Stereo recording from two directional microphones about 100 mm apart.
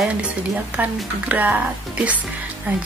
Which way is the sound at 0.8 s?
15° right (ahead or behind).